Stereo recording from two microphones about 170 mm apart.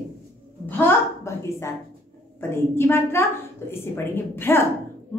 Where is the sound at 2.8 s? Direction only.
15° left (ahead or behind).